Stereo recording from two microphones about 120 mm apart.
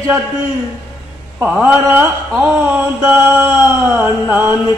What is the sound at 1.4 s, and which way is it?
Mantra, 15° right (ahead or behind).